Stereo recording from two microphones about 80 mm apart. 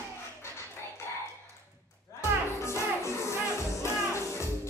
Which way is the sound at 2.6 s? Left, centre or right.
Left.